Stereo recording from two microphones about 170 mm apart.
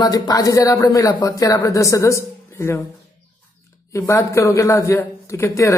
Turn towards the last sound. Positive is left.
turn(degrees=15)  # may be behind; listen again after turning